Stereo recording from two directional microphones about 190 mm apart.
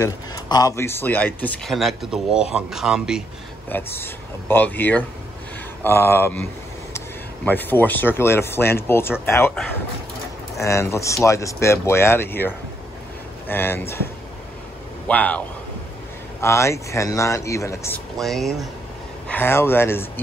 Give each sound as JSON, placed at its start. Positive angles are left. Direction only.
{"t": 0.0, "sound": "speech", "side_deg": 20}
{"t": 3.6, "sound": "speech", "side_deg": 10}
{"t": 15.0, "sound": "speech", "side_deg": 5}
{"t": 18.1, "sound": "speech", "side_deg": 0}